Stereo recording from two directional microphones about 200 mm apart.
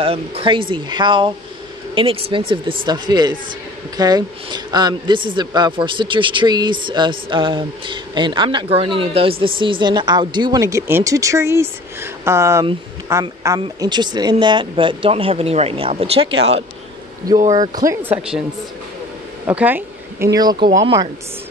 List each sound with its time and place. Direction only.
0.0 s speech: 30° right (ahead or behind)
17.6 s speech: 15° right (ahead or behind)
19.4 s speech: 10° right (ahead or behind)